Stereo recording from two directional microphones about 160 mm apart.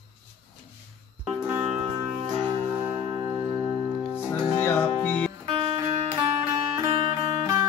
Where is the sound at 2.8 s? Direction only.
15° right (ahead or behind).